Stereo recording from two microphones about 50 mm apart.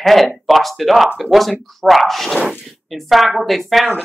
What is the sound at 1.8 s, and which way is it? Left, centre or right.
Speech, centre.